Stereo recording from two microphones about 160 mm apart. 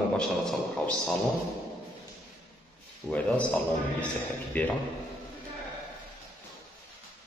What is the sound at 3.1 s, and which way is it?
A man's voice, 10° left (ahead or behind).